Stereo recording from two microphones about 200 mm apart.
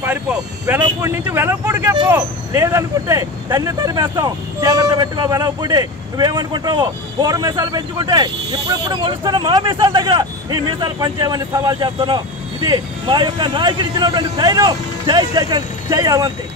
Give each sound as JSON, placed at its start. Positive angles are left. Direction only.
{"t": 0.0, "sound": "speech", "side_deg": -10}